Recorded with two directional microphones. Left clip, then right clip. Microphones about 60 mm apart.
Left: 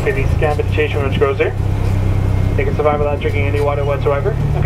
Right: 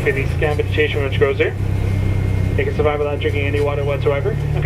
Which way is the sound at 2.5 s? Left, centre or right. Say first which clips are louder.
Left 2 dB; right.